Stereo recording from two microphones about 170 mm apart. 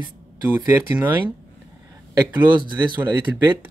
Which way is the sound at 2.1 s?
25° right (ahead or behind).